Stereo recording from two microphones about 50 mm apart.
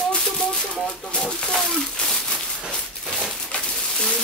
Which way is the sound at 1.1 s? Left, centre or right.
Centre.